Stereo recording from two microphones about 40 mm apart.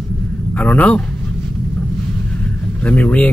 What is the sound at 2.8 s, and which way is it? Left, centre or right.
Speech, left.